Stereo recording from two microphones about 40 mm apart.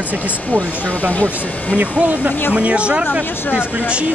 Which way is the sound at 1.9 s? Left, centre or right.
Right.